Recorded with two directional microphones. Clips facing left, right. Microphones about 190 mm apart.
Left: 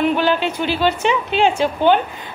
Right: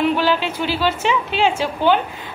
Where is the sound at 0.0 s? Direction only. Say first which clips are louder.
Left 1 dB; 50° left (ahead or behind).